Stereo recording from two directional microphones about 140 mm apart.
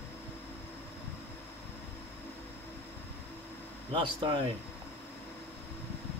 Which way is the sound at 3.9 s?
35° right (ahead or behind).